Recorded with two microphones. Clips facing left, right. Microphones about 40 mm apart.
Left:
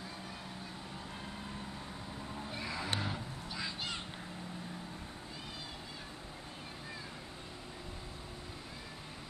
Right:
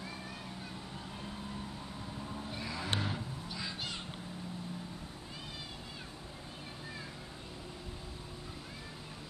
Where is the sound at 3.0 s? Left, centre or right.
Centre.